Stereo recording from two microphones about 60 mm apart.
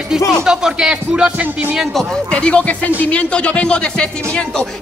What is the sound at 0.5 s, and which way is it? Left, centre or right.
Speech, centre.